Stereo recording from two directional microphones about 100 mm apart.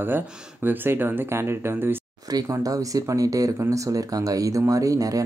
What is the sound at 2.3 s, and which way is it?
Speech, 35° right (ahead or behind).